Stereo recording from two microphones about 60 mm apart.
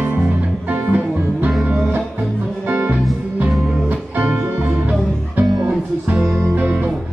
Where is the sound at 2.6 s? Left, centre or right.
Right.